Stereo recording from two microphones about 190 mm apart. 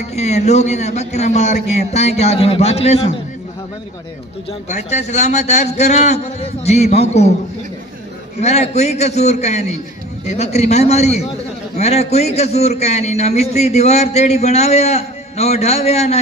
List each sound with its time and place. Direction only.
0.1 s a man's voice: 35° left (ahead or behind)
4.6 s a man's voice: 35° left (ahead or behind)
8.4 s a man's voice: 35° left (ahead or behind)